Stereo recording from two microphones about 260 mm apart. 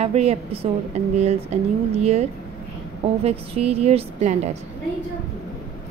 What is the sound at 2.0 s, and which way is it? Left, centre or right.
A woman's voice, right.